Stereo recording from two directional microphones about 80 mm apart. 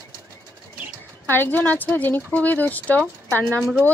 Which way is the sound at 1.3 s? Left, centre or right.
Left.